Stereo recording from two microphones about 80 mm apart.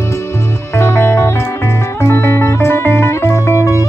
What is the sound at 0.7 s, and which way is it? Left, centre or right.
Music, left.